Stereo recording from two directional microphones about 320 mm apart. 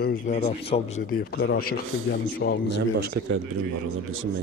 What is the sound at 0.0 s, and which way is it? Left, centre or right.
Speech, left.